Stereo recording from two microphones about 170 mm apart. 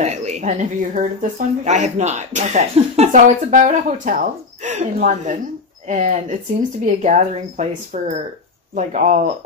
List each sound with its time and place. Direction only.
0.0 s speech: 40° right (ahead or behind)